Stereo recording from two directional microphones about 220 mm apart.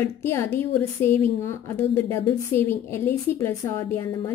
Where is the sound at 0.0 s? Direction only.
10° left (ahead or behind).